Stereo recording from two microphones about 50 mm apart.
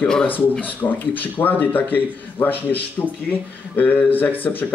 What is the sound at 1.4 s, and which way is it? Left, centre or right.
A man's voice, left.